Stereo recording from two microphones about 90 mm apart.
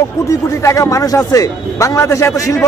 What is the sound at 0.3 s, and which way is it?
Speech, 35° left (ahead or behind).